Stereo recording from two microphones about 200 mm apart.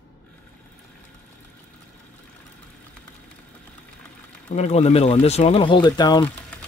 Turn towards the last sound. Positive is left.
turn(degrees=20)  # may be behind; listen again after turning